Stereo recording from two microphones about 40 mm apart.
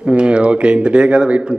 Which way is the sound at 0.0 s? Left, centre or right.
Right.